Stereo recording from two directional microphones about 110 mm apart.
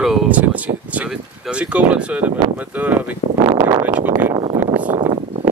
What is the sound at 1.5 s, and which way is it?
Speech, 10° right (ahead or behind).